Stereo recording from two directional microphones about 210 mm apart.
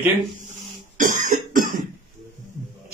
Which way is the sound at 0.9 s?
40° right (ahead or behind).